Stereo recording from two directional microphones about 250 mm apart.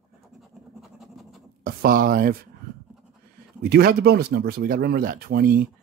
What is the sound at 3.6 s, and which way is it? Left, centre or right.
Speech, right.